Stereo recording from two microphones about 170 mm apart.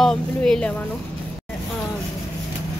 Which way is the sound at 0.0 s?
5° left (ahead or behind).